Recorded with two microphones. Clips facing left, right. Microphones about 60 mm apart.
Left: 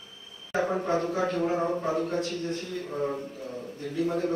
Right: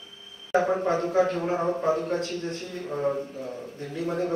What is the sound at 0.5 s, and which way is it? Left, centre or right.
Speech, centre.